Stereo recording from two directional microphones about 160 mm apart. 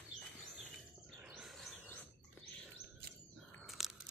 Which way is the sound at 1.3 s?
Centre (ahead or behind).